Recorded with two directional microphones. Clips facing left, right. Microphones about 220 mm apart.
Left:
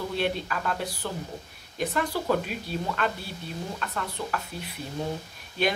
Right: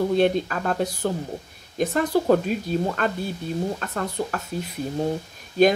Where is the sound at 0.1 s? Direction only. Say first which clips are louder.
Right 8 dB; 45° right (ahead or behind).